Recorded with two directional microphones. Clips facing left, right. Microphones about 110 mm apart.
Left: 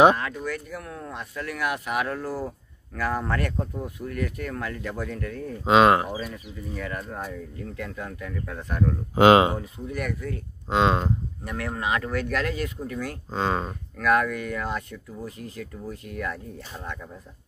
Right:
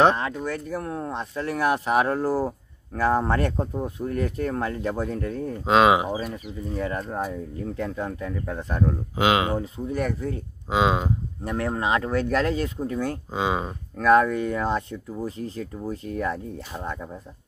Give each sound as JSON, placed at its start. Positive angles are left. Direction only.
{"t": 0.4, "sound": "speech", "side_deg": -30}
{"t": 5.7, "sound": "speech", "side_deg": 0}
{"t": 6.3, "sound": "speech", "side_deg": -30}
{"t": 9.1, "sound": "speech", "side_deg": 45}
{"t": 9.6, "sound": "speech", "side_deg": -30}
{"t": 10.7, "sound": "speech", "side_deg": -5}
{"t": 11.4, "sound": "speech", "side_deg": -30}
{"t": 13.3, "sound": "speech", "side_deg": -10}
{"t": 13.9, "sound": "speech", "side_deg": -30}